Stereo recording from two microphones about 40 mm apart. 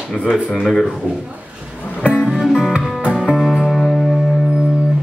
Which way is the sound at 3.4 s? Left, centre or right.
Centre.